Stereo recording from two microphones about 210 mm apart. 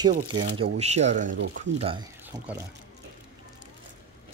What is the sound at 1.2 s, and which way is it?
Speech, 60° right (ahead or behind).